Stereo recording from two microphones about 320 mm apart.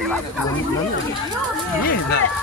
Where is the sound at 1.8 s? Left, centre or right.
Left.